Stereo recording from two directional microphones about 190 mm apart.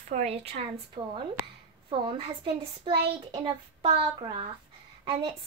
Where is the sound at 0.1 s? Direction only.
35° right (ahead or behind).